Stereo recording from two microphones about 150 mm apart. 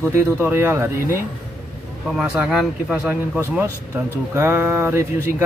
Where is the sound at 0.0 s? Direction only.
15° right (ahead or behind).